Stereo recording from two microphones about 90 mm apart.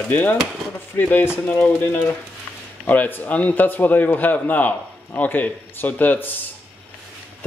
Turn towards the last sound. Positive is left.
turn(degrees=20)  # may be behind; listen again after turning